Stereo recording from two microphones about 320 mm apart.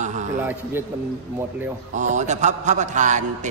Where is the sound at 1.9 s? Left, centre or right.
Right.